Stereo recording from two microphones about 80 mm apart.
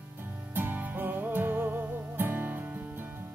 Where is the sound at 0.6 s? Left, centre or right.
Right.